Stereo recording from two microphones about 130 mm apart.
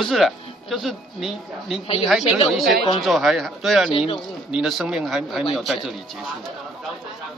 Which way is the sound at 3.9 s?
40° left (ahead or behind).